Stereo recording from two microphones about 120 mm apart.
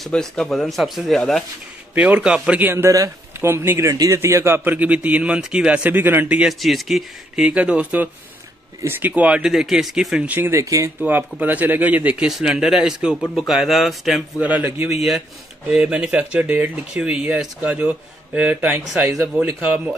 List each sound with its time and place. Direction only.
0.0 s speech: 5° left (ahead or behind)
2.0 s speech: 10° right (ahead or behind)
6.6 s speech: centre (ahead or behind)
10.3 s speech: 15° right (ahead or behind)
10.6 s speech: 30° right (ahead or behind)
11.0 s speech: 15° right (ahead or behind)
14.4 s speech: 15° right (ahead or behind)
14.9 s speech: 5° right (ahead or behind)